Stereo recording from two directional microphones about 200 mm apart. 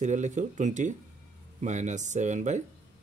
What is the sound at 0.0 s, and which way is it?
Speech, 35° right (ahead or behind).